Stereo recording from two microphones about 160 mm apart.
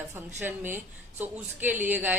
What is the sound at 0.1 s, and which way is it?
A woman's voice, 10° right (ahead or behind).